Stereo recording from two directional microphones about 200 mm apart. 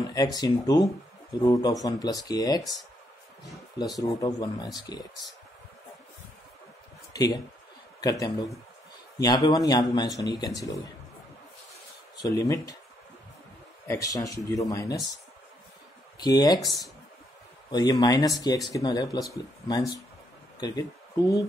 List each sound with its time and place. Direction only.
0.1 s speech: 20° left (ahead or behind)
4.0 s speech: 20° left (ahead or behind)
7.1 s a sound: 20° left (ahead or behind)
8.0 s speech: 20° left (ahead or behind)
12.2 s speech: 15° left (ahead or behind)
13.8 s speech: 15° left (ahead or behind)
16.2 s speech: 20° left (ahead or behind)
17.6 s speech: 20° left (ahead or behind)